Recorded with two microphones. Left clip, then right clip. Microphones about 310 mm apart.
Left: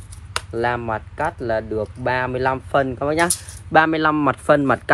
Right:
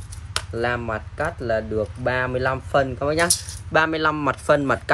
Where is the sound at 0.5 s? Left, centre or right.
Centre.